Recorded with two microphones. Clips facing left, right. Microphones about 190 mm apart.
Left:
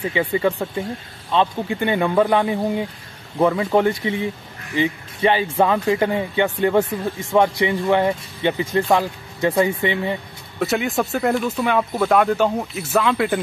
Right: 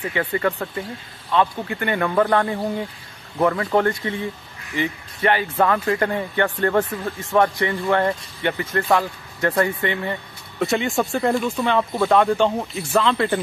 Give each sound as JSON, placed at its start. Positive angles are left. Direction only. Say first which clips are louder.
{"t": 0.0, "sound": "speech", "louder": "left 3 dB", "side_deg": 10}
{"t": 1.3, "sound": "speech", "louder": "left 1 dB", "side_deg": 20}
{"t": 10.6, "sound": "speech", "louder": "even", "side_deg": 0}